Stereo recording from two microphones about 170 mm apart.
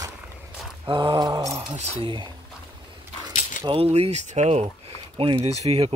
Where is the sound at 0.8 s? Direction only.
30° right (ahead or behind).